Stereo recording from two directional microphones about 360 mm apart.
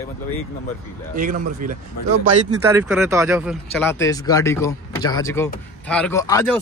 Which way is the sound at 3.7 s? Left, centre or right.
Centre.